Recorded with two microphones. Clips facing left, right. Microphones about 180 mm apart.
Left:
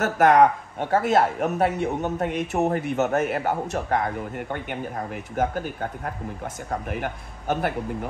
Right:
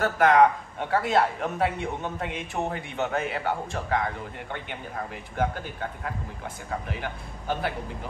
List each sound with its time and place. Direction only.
0.0 s a man's voice: 45° left (ahead or behind)